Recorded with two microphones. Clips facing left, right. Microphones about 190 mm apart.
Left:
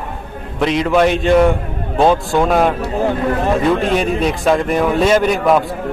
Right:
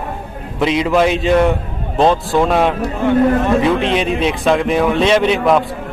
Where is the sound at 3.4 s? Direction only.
45° left (ahead or behind).